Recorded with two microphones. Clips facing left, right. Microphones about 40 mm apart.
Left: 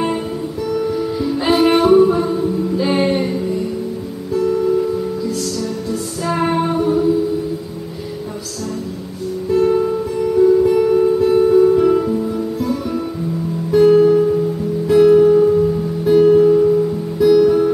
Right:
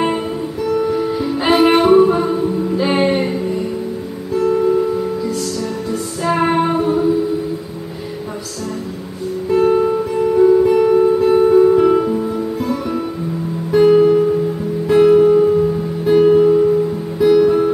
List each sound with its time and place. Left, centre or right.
0.0 s music: centre
9.5 s music: right